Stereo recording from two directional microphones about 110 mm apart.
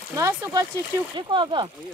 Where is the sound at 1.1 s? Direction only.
45° right (ahead or behind).